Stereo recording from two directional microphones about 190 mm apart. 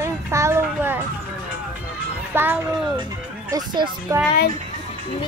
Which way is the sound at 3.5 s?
20° right (ahead or behind).